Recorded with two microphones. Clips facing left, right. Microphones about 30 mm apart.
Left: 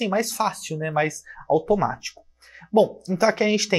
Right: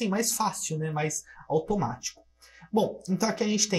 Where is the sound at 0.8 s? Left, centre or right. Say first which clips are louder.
Left 8 dB; left.